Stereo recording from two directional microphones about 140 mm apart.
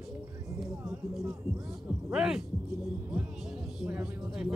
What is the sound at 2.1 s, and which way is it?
Speech, 5° right (ahead or behind).